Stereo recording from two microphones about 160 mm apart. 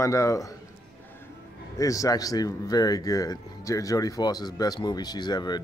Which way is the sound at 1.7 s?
20° left (ahead or behind).